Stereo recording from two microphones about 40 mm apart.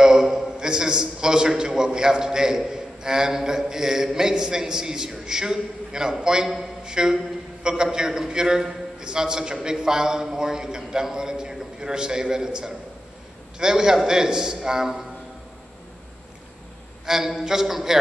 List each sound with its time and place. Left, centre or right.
0.0 s a man's voice: centre
6.8 s a sound: centre
7.6 s a man's voice: centre
17.0 s a man's voice: centre